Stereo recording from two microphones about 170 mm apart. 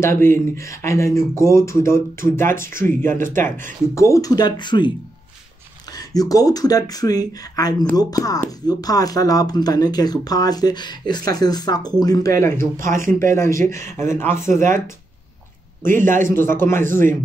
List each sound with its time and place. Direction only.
0.0 s speech: 15° left (ahead or behind)
12.5 s speech: 50° right (ahead or behind)
13.3 s speech: 15° left (ahead or behind)
15.8 s speech: 50° right (ahead or behind)
16.3 s speech: 15° left (ahead or behind)